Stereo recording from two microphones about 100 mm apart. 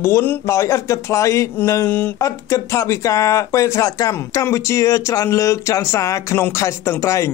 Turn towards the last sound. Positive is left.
turn(degrees=30)  # may be behind; listen again after turning